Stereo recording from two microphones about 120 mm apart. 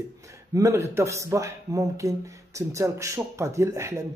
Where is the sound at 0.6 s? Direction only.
20° right (ahead or behind).